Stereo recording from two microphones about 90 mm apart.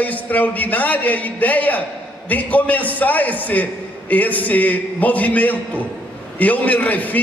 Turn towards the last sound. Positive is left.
turn(degrees=20)  # may be behind; listen again after turning